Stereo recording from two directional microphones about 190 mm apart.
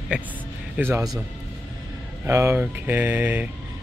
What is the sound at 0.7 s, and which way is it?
Speech, 10° right (ahead or behind).